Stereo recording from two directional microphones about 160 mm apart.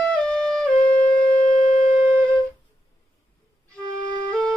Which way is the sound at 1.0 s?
50° left (ahead or behind).